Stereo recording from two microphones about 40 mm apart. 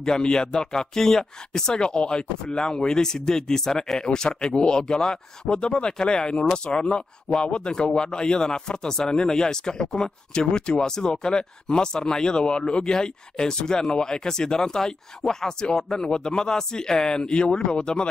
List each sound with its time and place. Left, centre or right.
0.0 s speech: centre